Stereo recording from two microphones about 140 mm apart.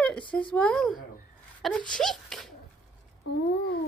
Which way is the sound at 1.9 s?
5° left (ahead or behind).